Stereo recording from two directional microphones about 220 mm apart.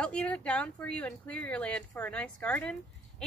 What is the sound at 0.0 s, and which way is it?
Speech, 5° left (ahead or behind).